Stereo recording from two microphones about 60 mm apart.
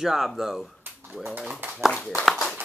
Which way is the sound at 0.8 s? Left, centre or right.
Right.